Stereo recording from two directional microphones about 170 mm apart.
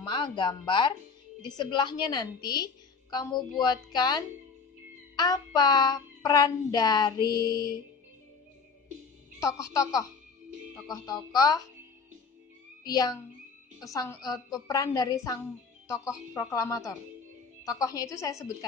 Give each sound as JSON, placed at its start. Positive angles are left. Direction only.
{"t": 0.0, "sound": "child singing", "side_deg": 30}
{"t": 9.4, "sound": "child singing", "side_deg": 20}
{"t": 12.8, "sound": "child singing", "side_deg": 20}